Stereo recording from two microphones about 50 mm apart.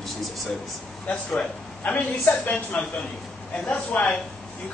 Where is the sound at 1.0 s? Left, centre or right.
Left.